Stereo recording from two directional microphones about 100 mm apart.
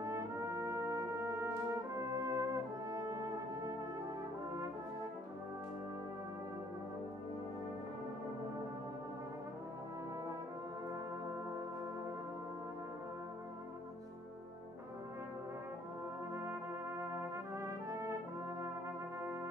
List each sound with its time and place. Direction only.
0.0 s brass instrument: 30° right (ahead or behind)
16.3 s brass instrument: 25° right (ahead or behind)